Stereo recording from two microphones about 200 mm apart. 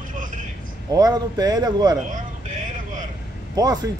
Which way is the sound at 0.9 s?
20° right (ahead or behind).